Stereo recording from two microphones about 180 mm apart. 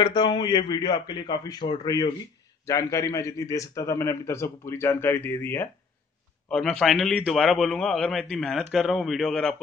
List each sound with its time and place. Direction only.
0.0 s a man's voice: 25° left (ahead or behind)
6.5 s a man's voice: centre (ahead or behind)